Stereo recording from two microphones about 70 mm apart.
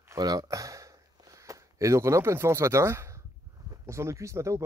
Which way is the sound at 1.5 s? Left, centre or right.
Right.